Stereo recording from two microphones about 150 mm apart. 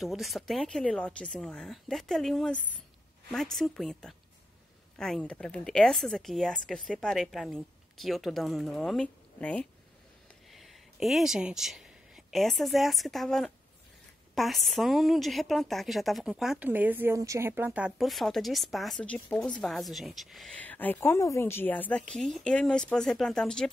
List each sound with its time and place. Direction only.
0.0 s a woman's voice: centre (ahead or behind)